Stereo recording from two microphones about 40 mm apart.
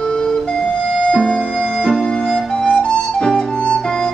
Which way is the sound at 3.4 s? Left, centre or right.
Centre.